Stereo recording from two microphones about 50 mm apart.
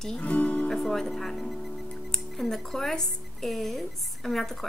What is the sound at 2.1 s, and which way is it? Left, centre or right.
Speech, centre.